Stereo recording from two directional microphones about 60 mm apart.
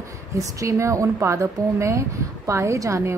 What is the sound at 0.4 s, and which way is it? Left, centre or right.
A woman's voice, right.